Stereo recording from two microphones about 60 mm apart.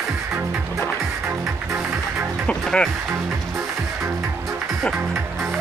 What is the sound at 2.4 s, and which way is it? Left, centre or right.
Music, centre.